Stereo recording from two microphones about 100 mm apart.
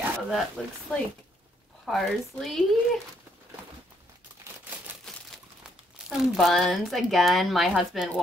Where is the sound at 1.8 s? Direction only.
5° left (ahead or behind).